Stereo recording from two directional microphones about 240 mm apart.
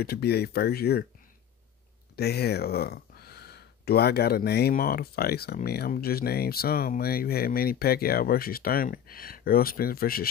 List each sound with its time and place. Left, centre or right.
0.0 s speech: left
2.1 s speech: left